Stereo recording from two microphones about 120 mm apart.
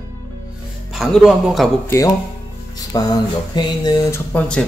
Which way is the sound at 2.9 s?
30° left (ahead or behind).